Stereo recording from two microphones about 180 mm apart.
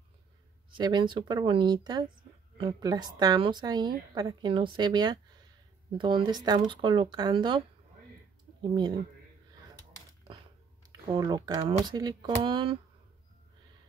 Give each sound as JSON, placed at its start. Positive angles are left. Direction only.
{"t": 0.7, "sound": "speech", "side_deg": -25}
{"t": 8.7, "sound": "speech", "side_deg": -25}
{"t": 10.9, "sound": "speech", "side_deg": -20}